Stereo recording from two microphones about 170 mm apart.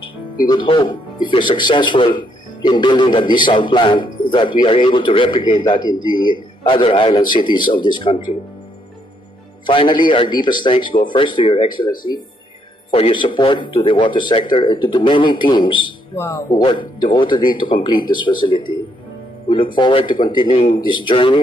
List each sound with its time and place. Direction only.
0.5 s speech: 25° left (ahead or behind)
5.9 s a man's voice: 30° right (ahead or behind)
6.2 s speech: 30° left (ahead or behind)
9.7 s speech: 30° left (ahead or behind)
12.9 s speech: 30° left (ahead or behind)
20.4 s speech: 40° left (ahead or behind)
20.7 s speech: 25° left (ahead or behind)